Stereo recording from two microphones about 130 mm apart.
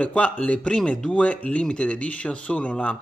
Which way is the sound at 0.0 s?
10° left (ahead or behind).